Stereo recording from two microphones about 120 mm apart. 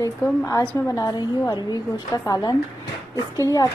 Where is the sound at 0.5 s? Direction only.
30° left (ahead or behind).